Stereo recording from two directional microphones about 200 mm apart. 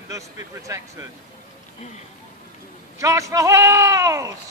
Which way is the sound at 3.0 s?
15° right (ahead or behind).